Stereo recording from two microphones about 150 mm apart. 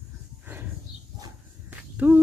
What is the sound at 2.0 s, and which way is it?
Speech, 10° right (ahead or behind).